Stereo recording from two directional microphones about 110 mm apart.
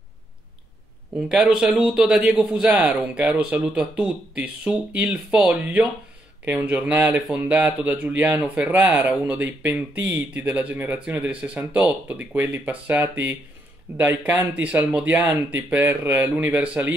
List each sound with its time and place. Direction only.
1.3 s speech: 5° right (ahead or behind)